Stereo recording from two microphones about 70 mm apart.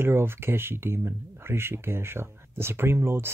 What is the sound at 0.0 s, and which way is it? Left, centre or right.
Speech, right.